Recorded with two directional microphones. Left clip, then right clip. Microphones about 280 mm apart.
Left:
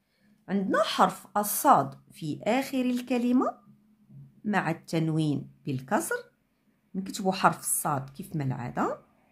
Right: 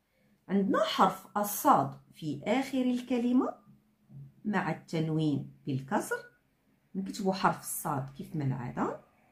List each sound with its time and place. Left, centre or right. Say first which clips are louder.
0.5 s a woman's voice: left 2 dB; left